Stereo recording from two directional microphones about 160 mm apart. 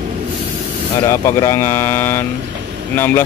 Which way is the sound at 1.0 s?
15° left (ahead or behind).